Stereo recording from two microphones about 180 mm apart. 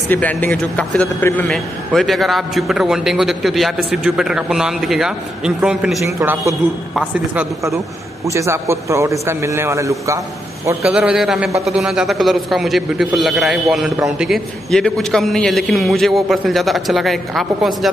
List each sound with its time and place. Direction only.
0.1 s a man's voice: 10° left (ahead or behind)
6.0 s a man's voice: 15° right (ahead or behind)
8.3 s a man's voice: 15° right (ahead or behind)
10.8 s a man's voice: 5° right (ahead or behind)